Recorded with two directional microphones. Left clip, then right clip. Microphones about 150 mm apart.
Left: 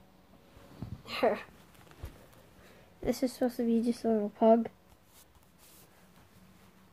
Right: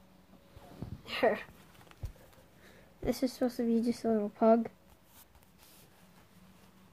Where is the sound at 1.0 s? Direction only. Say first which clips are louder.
Even; 5° right (ahead or behind).